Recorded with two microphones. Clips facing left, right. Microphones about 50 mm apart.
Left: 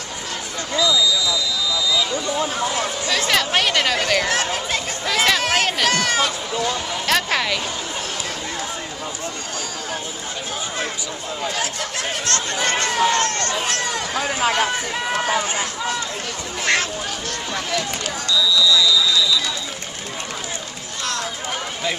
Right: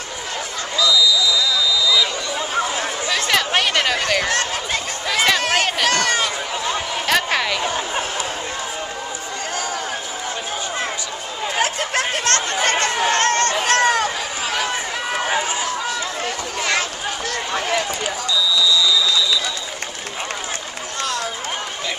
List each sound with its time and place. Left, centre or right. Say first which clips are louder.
0.7 s a sound: right 1 dB; left
3.1 s chatter: right 1 dB; centre
7.1 s speech: right 1 dB; centre
7.6 s speech: right 5 dB; right
11.5 s a sound: right 5 dB; right
12.6 s chatter: right 2 dB; right
13.0 s speech: right 2 dB; right
13.7 s a sound: right 7 dB; right
15.2 s run: right 2 dB; centre
17.6 s speech: right 3 dB; right